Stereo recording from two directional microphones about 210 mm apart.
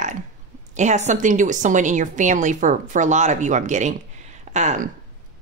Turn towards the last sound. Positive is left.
turn(degrees=-35)  # may be behind; listen again after turning